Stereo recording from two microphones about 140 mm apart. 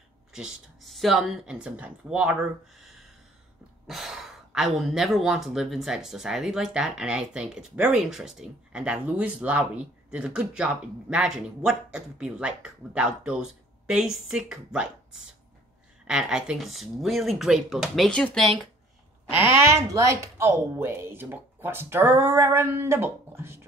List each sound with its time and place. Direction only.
0.3 s speech: 5° right (ahead or behind)
2.8 s a sound: centre (ahead or behind)
3.8 s speech: centre (ahead or behind)
19.6 s speech: 20° right (ahead or behind)